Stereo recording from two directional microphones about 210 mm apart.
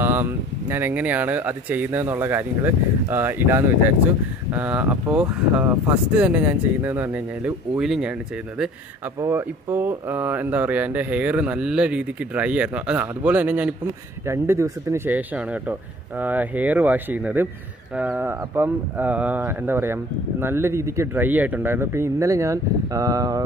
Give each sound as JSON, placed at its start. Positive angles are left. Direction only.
{"t": 0.0, "sound": "speech", "side_deg": -10}
{"t": 9.2, "sound": "speech", "side_deg": -10}